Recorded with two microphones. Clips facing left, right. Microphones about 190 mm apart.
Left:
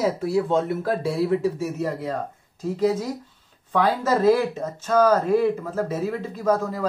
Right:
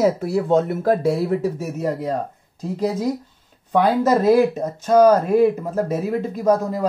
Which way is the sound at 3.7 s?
20° right (ahead or behind).